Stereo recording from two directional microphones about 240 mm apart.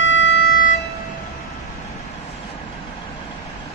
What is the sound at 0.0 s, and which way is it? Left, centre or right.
Music, left.